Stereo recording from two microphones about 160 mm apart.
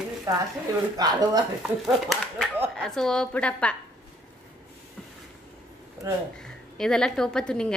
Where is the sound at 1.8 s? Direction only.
Centre (ahead or behind).